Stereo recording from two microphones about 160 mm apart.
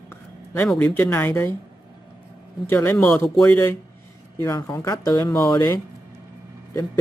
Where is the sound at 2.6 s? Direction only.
15° left (ahead or behind).